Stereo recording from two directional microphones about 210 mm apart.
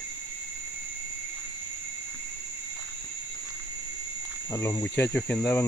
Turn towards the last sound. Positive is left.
turn(degrees=10)  # may be behind; listen again after turning